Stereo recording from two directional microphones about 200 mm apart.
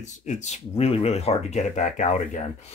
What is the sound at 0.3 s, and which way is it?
Speech, 35° left (ahead or behind).